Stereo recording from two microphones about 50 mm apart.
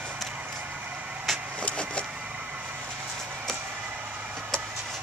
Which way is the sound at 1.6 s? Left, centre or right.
Left.